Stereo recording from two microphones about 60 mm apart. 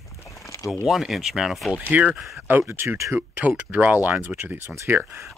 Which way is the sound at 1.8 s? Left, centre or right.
Right.